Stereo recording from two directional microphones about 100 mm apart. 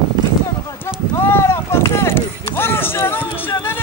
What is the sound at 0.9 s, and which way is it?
Run, 25° left (ahead or behind).